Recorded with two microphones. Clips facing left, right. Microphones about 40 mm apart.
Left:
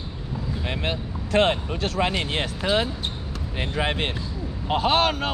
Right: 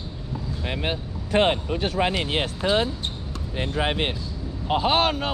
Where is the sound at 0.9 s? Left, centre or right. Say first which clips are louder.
Left 1 dB; centre.